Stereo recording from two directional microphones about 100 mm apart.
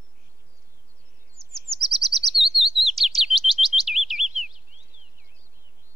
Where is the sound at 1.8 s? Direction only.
Centre (ahead or behind).